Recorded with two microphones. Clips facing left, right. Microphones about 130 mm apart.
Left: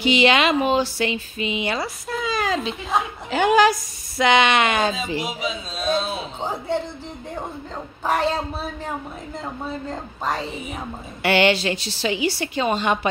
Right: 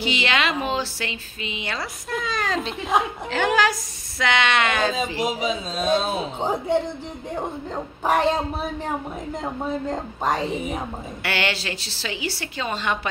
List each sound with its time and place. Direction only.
0.0 s speech: 20° left (ahead or behind)
3.3 s speech: 15° left (ahead or behind)
5.2 s a man's voice: 45° right (ahead or behind)
6.4 s a woman's voice: 15° right (ahead or behind)
8.0 s a woman's voice: 15° right (ahead or behind)
11.2 s speech: 20° left (ahead or behind)